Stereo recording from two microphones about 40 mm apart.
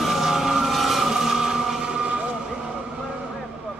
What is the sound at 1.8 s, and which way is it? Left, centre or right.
Vehicle, right.